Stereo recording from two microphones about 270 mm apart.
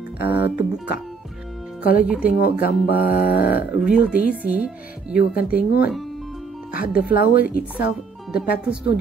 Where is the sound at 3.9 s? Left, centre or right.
Centre.